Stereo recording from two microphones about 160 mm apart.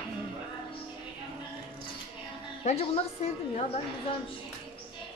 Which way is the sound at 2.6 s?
40° left (ahead or behind).